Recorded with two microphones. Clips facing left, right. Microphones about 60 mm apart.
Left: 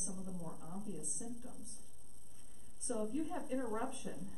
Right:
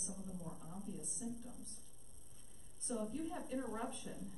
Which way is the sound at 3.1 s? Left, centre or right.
Centre.